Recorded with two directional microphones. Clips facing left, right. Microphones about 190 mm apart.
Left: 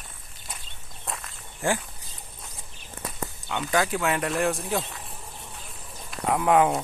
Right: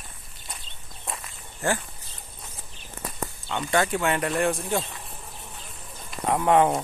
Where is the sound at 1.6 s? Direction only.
15° left (ahead or behind).